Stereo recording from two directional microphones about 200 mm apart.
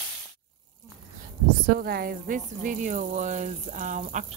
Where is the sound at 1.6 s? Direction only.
50° right (ahead or behind).